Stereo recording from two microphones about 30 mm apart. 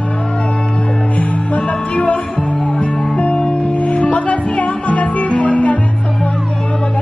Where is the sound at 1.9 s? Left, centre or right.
Left.